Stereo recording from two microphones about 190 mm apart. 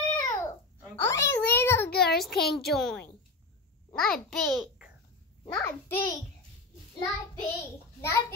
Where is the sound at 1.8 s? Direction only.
55° left (ahead or behind).